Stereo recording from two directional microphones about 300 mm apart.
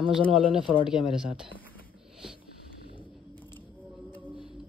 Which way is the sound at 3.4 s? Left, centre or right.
Centre.